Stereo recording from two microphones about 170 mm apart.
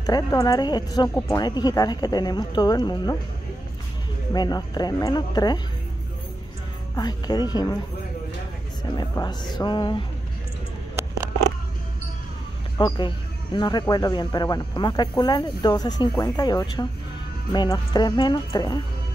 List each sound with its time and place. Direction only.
0.0 s speech: 20° left (ahead or behind)
4.3 s speech: 25° left (ahead or behind)
7.0 s speech: 25° left (ahead or behind)
8.9 s speech: 25° left (ahead or behind)
11.0 s a sound: 15° right (ahead or behind)
12.7 s speech: 25° left (ahead or behind)